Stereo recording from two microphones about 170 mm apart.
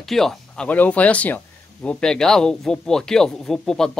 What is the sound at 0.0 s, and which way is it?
Speech, centre (ahead or behind).